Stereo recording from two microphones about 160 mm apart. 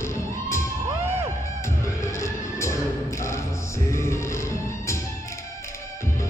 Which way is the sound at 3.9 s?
20° left (ahead or behind).